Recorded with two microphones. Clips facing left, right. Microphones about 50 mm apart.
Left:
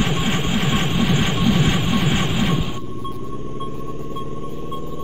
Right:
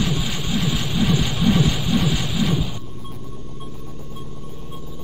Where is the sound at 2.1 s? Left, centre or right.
Left.